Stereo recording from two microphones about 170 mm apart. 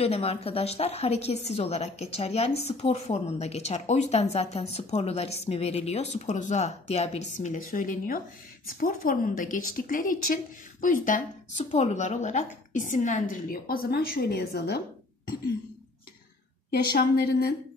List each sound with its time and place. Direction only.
0.0 s a woman's voice: 35° left (ahead or behind); by 14.8 s 70° left (ahead or behind)
16.9 s a woman's voice: 70° left (ahead or behind)